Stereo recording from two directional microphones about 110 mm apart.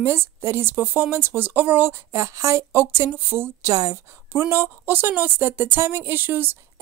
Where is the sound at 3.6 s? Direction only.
30° right (ahead or behind).